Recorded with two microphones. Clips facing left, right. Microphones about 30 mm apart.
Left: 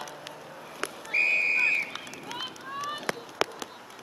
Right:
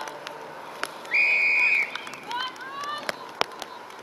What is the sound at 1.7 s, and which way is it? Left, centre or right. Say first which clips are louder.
Run: right 4 dB; right.